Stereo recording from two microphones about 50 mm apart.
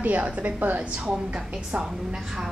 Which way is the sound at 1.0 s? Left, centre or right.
Centre.